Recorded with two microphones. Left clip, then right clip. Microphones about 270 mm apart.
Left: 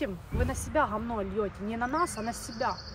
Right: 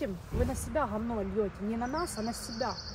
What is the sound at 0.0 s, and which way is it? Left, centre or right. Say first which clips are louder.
Speech: left 1 dB; left.